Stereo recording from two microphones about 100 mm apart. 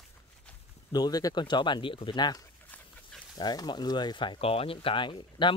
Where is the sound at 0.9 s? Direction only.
40° left (ahead or behind).